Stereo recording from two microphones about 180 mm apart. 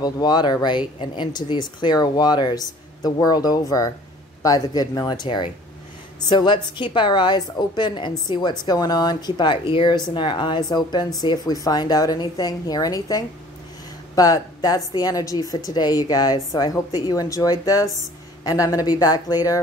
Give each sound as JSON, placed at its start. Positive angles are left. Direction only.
{"t": 0.0, "sound": "a woman's voice", "side_deg": 25}